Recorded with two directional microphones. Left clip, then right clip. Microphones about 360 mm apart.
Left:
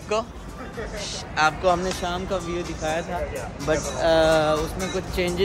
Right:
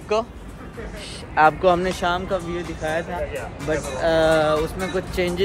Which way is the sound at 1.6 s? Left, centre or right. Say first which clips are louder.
Right 3 dB; right.